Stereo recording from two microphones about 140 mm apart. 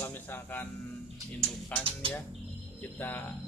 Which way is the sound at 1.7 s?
10° left (ahead or behind).